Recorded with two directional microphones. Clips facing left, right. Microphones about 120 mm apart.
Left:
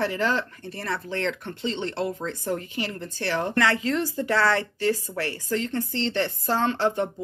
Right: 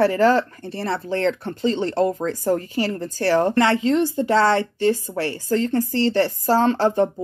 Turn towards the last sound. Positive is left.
turn(degrees=-35)  # may be behind; listen again after turning